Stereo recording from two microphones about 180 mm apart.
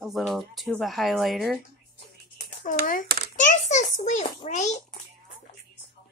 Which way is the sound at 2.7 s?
45° left (ahead or behind).